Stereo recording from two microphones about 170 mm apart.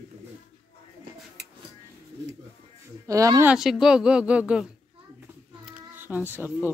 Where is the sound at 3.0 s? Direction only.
20° right (ahead or behind).